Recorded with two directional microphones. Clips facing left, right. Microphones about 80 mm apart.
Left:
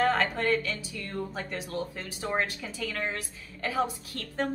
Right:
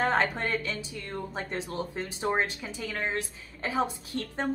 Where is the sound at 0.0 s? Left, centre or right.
Right.